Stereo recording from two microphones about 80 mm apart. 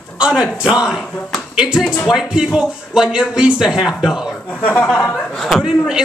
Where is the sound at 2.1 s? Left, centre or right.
Centre.